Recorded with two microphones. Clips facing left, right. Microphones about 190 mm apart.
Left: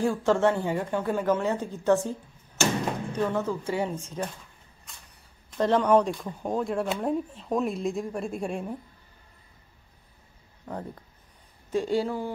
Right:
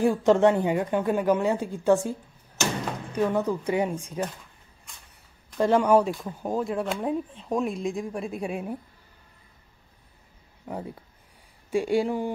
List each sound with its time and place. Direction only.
0.0 s a woman's voice: 20° right (ahead or behind)
3.2 s a woman's voice: 15° right (ahead or behind)
5.6 s speech: 10° right (ahead or behind)
10.6 s a woman's voice: 10° right (ahead or behind)